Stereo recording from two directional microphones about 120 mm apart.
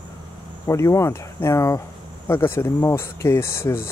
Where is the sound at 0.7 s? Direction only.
25° left (ahead or behind).